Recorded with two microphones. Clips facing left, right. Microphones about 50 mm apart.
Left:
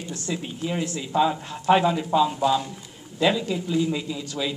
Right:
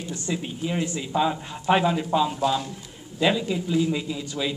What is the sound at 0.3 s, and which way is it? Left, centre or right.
Speech, centre.